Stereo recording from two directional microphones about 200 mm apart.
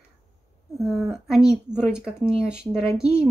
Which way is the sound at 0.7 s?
Centre (ahead or behind).